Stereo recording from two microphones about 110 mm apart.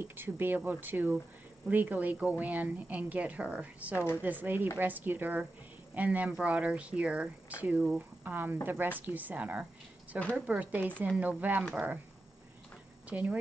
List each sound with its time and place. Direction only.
0.0 s speech: 20° right (ahead or behind)
13.1 s speech: 10° right (ahead or behind)